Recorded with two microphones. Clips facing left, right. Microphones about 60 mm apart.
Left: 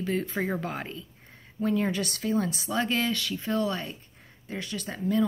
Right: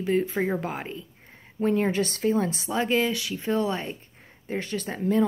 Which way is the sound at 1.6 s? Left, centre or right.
Right.